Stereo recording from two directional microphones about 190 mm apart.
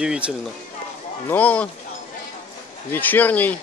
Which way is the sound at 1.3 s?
5° left (ahead or behind).